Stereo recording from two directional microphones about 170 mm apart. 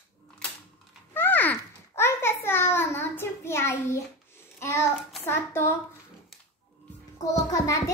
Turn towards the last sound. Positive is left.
turn(degrees=20)  # may be behind; listen again after turning